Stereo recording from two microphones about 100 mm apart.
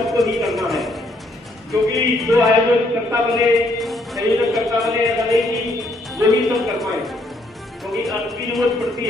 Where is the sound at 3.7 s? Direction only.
Centre (ahead or behind).